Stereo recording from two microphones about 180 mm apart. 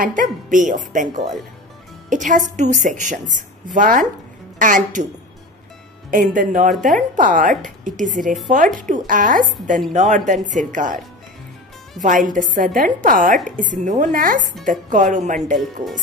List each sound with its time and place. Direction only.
0.0 s a woman's voice: 50° right (ahead or behind)
6.0 s a woman's voice: 50° right (ahead or behind)
12.0 s a woman's voice: 45° right (ahead or behind)